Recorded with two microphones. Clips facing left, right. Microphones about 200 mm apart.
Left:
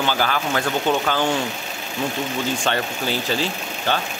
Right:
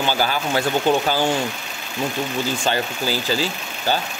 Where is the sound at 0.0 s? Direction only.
35° right (ahead or behind).